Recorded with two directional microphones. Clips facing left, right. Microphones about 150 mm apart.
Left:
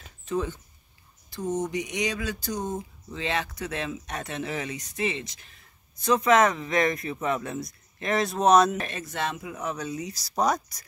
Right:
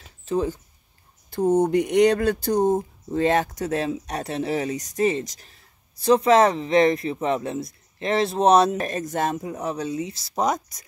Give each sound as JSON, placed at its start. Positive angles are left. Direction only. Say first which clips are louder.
{"t": 0.2, "sound": "speech", "louder": "right 5 dB", "side_deg": -35}
{"t": 1.3, "sound": "speech", "louder": "right 10 dB", "side_deg": -60}